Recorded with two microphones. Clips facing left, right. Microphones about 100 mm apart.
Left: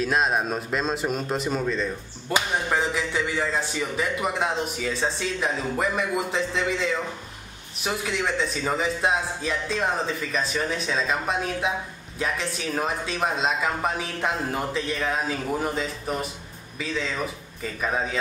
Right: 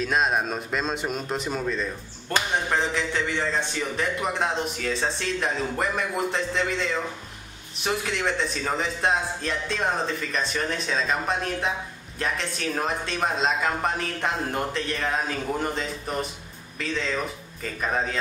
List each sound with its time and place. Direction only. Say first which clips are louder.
0.0 s a man's voice: left 1 dB; centre (ahead or behind)